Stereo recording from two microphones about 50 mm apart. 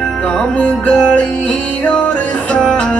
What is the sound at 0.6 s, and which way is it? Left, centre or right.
Music, left.